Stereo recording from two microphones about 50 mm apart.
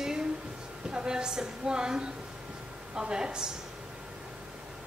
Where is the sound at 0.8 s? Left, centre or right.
Centre.